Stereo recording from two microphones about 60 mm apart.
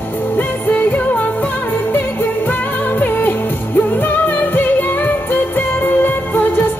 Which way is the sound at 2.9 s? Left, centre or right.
Left.